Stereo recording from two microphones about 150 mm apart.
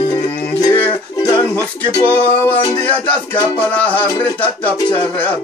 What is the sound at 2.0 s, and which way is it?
Music, 10° left (ahead or behind).